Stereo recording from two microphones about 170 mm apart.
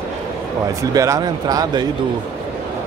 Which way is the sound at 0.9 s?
20° right (ahead or behind).